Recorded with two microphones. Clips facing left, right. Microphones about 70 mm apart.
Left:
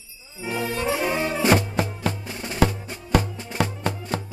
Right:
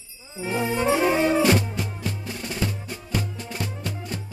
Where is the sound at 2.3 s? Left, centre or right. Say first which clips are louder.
Even; centre.